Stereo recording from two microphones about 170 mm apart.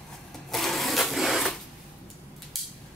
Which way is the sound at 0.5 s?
Centre (ahead or behind).